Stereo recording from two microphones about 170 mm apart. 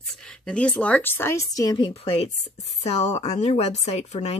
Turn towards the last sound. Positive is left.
turn(degrees=40)  # may be behind; listen again after turning